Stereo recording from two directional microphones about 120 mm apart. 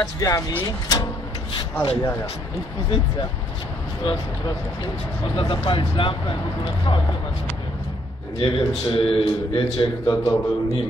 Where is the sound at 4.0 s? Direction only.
40° left (ahead or behind).